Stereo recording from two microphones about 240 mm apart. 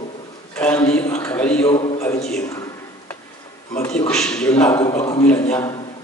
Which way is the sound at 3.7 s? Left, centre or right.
Centre.